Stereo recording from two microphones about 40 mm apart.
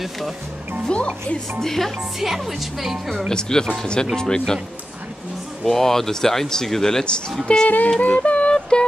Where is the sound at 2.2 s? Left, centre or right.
Centre.